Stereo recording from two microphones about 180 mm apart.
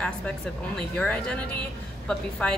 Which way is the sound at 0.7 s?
5° left (ahead or behind).